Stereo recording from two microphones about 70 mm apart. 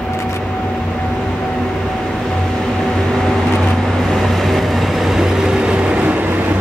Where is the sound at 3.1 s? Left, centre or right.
Centre.